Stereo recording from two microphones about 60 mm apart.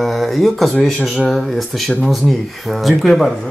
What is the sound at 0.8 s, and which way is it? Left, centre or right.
Speech, centre.